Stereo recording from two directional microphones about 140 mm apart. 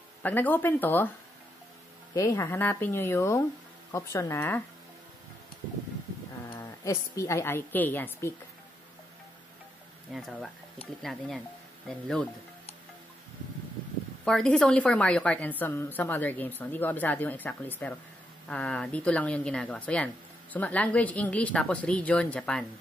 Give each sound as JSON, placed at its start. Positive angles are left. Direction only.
{"t": 0.2, "sound": "a woman's voice", "side_deg": 15}
{"t": 2.1, "sound": "a woman's voice", "side_deg": 20}
{"t": 6.8, "sound": "a woman's voice", "side_deg": 20}
{"t": 10.1, "sound": "speech", "side_deg": 0}
{"t": 14.2, "sound": "a woman's voice", "side_deg": 5}